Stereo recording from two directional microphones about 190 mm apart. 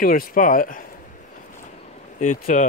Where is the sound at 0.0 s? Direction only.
50° left (ahead or behind).